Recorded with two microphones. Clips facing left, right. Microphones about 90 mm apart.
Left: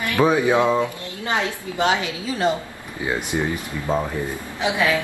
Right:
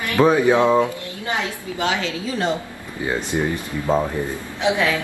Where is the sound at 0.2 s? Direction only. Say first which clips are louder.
Right 3 dB; 5° left (ahead or behind).